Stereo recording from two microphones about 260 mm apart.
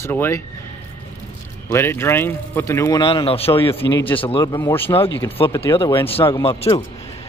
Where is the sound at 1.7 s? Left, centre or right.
Centre.